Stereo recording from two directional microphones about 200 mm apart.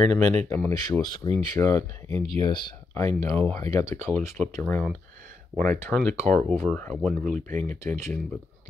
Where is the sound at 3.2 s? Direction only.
10° left (ahead or behind).